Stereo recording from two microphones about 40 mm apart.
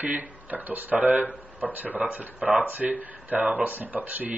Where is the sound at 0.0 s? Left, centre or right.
Right.